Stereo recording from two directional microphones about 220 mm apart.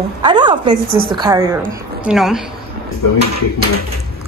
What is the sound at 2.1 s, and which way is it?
Speech, centre (ahead or behind).